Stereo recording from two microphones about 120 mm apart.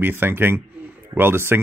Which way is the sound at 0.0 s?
15° right (ahead or behind).